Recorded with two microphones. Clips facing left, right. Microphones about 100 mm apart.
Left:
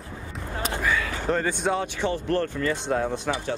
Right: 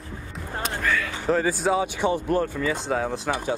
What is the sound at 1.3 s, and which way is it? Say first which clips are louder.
Speech: right 3 dB; centre (ahead or behind).